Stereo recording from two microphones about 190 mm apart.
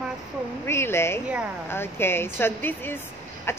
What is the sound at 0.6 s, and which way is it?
A woman's voice, 10° left (ahead or behind).